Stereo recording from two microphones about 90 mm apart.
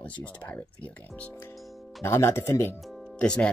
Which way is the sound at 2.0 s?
30° left (ahead or behind).